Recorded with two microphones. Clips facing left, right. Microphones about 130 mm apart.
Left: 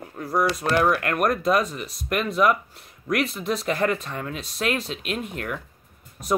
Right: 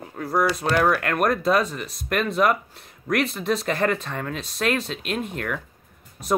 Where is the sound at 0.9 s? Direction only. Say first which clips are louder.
Right 1 dB; 35° right (ahead or behind).